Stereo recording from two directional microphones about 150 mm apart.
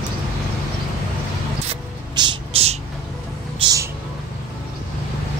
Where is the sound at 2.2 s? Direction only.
30° right (ahead or behind).